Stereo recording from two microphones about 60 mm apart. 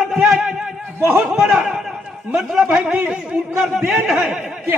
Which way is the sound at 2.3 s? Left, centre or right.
Centre.